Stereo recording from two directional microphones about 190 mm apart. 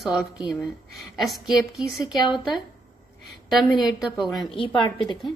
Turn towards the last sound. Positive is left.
turn(degrees=25)  # may be behind; listen again after turning